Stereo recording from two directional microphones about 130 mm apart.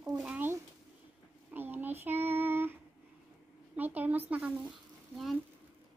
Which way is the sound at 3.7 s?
15° right (ahead or behind).